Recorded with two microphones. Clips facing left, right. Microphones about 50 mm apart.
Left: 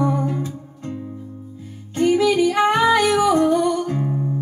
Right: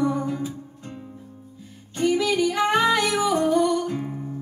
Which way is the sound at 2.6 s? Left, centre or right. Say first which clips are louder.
Left 4 dB; left.